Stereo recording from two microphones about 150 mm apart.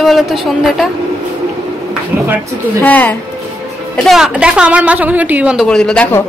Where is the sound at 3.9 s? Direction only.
Centre (ahead or behind).